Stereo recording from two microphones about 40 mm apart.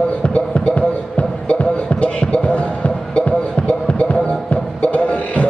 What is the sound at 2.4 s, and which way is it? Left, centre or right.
Basketball bounce, left.